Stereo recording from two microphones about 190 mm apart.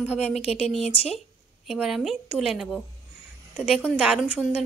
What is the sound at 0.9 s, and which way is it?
Speech, 30° left (ahead or behind).